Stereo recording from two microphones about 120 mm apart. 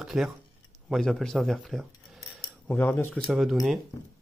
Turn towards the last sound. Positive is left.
turn(degrees=0)  # may be behind; listen again after turning